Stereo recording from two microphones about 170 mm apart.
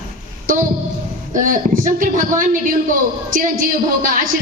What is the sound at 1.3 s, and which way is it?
A woman's voice, 50° right (ahead or behind).